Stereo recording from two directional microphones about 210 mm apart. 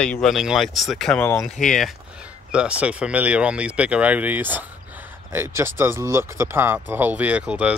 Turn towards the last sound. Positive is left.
turn(degrees=-5)  # may be behind; listen again after turning